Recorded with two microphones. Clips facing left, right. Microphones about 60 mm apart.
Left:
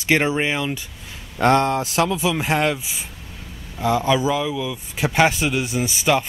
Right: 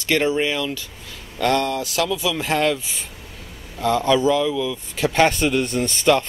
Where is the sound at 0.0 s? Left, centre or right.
Left.